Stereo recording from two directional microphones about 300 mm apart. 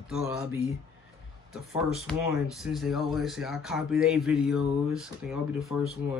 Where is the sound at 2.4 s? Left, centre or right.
Centre.